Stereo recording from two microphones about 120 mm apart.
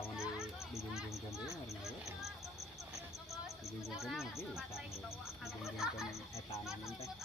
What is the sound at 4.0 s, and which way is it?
Speech, centre (ahead or behind).